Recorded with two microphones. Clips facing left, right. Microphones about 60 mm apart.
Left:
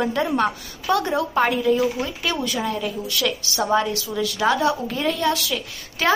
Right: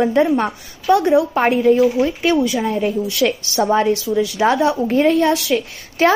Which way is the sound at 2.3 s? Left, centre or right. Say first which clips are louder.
Right 7 dB; centre.